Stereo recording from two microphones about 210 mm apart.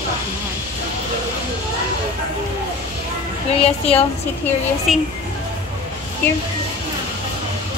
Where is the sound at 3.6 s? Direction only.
30° left (ahead or behind).